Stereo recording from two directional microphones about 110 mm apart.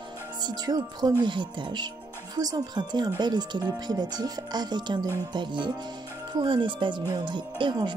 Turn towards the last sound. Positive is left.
turn(degrees=-45)  # may be behind; listen again after turning